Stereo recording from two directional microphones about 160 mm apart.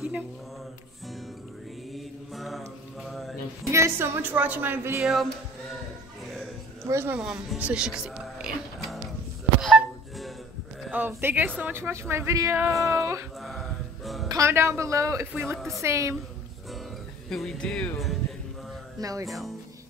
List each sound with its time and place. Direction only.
1.9 s mantra: centre (ahead or behind)
3.7 s speech: 15° right (ahead or behind)
5.0 s speech: centre (ahead or behind)
6.9 s speech: 15° right (ahead or behind)
9.6 s music: centre (ahead or behind)
10.8 s speech: 10° right (ahead or behind)
13.4 s music: centre (ahead or behind)
14.3 s speech: 15° right (ahead or behind)
15.5 s speech: centre (ahead or behind)
15.8 s speech: 20° right (ahead or behind)
17.3 s speech: centre (ahead or behind)
18.9 s speech: 20° right (ahead or behind)
19.2 s speech: centre (ahead or behind)